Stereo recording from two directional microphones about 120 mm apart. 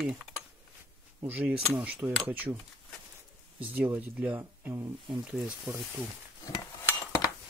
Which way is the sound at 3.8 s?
15° right (ahead or behind).